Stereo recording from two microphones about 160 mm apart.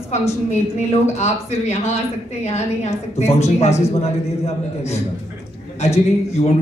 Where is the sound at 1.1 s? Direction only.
45° left (ahead or behind).